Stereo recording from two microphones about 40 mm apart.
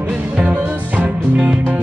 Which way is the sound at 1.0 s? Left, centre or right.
Right.